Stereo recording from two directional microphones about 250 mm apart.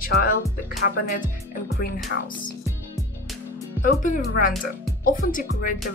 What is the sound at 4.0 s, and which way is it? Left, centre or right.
Speech, left.